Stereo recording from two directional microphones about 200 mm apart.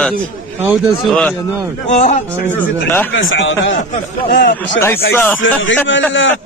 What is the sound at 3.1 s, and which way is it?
A man's voice, 70° left (ahead or behind).